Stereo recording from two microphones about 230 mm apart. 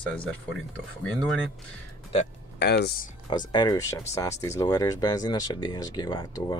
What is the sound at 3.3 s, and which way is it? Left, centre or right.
Speech, centre.